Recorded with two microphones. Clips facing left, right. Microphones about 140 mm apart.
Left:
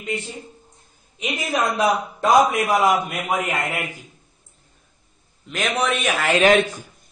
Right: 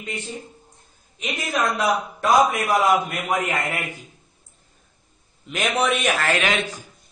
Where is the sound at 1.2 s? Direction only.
5° left (ahead or behind).